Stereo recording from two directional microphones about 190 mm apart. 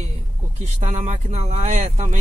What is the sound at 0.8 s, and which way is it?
Speech, 35° right (ahead or behind).